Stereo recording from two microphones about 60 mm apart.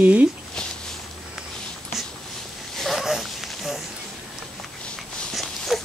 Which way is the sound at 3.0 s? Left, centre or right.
Centre.